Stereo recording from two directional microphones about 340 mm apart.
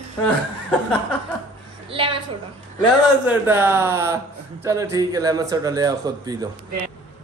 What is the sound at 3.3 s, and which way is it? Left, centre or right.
Speech, centre.